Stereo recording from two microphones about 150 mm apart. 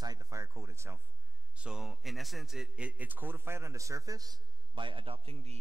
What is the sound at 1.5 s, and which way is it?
A man's voice, 5° right (ahead or behind).